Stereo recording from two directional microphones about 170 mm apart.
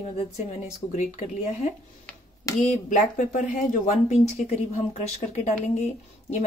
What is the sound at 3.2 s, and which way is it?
Speech, 50° left (ahead or behind).